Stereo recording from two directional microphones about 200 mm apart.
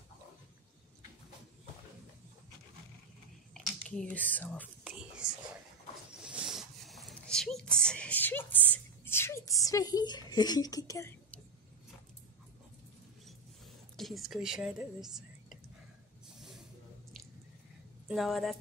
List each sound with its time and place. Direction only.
3.5 s whispering: 5° left (ahead or behind)
5.2 s a sound: 5° right (ahead or behind)
6.2 s speech: 5° right (ahead or behind); by 11.4 s 15° left (ahead or behind)
13.9 s a woman's voice: centre (ahead or behind)
16.3 s snake: centre (ahead or behind)
18.0 s a woman's voice: centre (ahead or behind)